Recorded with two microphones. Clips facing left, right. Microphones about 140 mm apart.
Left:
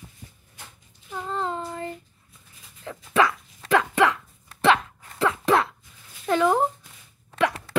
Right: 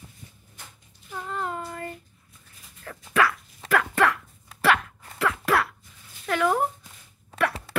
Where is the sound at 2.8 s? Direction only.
20° left (ahead or behind).